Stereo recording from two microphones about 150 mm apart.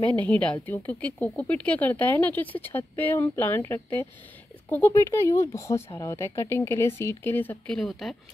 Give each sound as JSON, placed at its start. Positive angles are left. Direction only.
{"t": 0.2, "sound": "speech", "side_deg": 10}